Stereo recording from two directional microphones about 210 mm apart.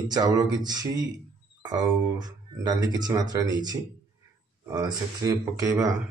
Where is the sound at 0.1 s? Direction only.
20° right (ahead or behind).